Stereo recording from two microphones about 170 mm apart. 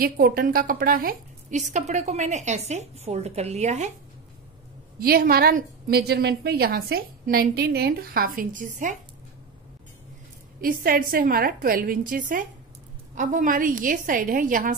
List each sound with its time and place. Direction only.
0.0 s a woman's voice: 60° right (ahead or behind); by 3.9 s 40° right (ahead or behind)
4.9 s a woman's voice: 60° right (ahead or behind)
10.6 s a woman's voice: 55° right (ahead or behind)